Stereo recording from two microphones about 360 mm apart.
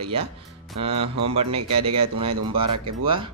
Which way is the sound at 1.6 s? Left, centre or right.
Right.